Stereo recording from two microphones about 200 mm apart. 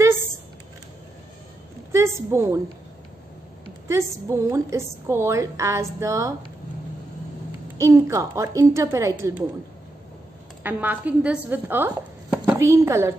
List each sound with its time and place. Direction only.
1.9 s a woman's voice: 15° right (ahead or behind)
3.8 s a woman's voice: 15° right (ahead or behind)
7.7 s a woman's voice: 15° right (ahead or behind)
10.6 s speech: 10° right (ahead or behind)